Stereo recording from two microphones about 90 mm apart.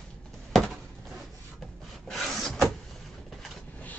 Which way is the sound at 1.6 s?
Centre (ahead or behind).